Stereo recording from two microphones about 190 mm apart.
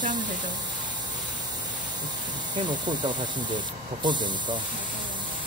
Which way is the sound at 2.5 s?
25° right (ahead or behind).